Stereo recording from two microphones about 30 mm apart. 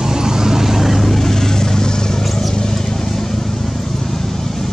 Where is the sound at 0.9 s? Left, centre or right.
Centre.